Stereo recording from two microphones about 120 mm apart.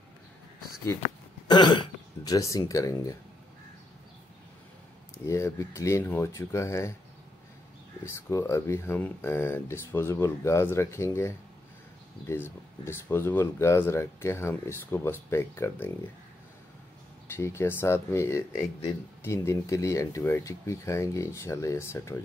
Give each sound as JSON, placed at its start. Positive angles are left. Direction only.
{"t": 0.8, "sound": "speech", "side_deg": 35}
{"t": 5.1, "sound": "speech", "side_deg": 25}
{"t": 8.0, "sound": "speech", "side_deg": 25}
{"t": 17.4, "sound": "speech", "side_deg": 20}